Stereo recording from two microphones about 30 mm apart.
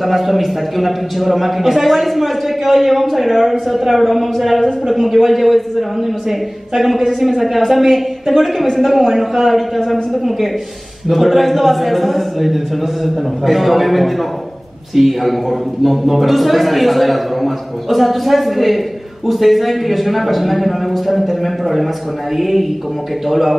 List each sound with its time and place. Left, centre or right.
0.0 s a man's voice: centre
4.9 s a man's voice: centre
5.2 s a man's voice: centre